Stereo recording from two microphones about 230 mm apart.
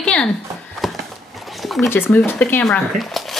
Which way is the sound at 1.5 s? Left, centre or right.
Centre.